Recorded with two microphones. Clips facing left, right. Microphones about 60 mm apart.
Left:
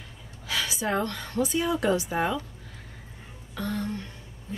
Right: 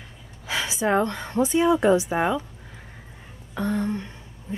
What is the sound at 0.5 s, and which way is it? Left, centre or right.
Speech, right.